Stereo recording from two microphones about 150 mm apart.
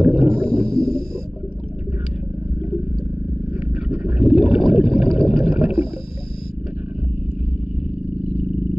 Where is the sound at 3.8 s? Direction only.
5° right (ahead or behind).